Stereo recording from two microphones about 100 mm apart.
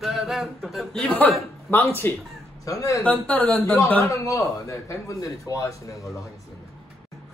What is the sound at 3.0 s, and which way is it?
Speech, 15° left (ahead or behind).